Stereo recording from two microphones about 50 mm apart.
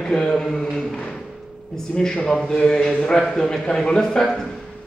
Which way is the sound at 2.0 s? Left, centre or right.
Centre.